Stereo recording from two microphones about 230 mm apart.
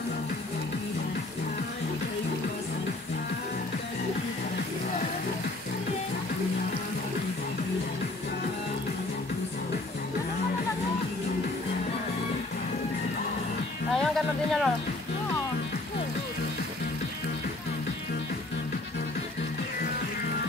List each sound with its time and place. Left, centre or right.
13.9 s speech: centre